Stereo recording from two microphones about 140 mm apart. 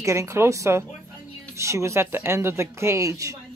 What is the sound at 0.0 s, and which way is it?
Speech, 20° right (ahead or behind).